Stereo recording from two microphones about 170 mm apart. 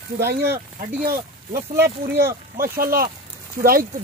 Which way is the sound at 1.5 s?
15° right (ahead or behind).